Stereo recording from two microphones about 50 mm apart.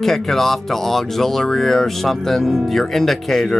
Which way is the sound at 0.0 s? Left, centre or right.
Centre.